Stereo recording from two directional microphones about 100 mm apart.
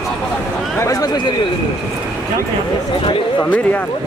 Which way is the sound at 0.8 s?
35° left (ahead or behind).